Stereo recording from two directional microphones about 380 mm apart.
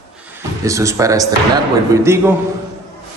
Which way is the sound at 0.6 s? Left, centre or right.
Centre.